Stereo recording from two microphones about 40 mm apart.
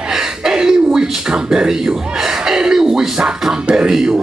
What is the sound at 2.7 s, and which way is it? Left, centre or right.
Speech, centre.